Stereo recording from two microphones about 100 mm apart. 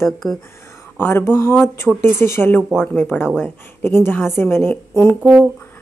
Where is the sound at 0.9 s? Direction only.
25° left (ahead or behind).